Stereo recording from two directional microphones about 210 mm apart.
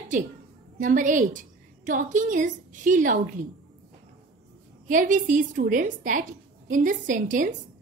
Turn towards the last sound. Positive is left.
turn(degrees=-40)  # may be behind; listen again after turning